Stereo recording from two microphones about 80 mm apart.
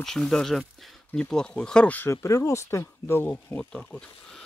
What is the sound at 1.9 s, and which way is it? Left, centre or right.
Speech, left.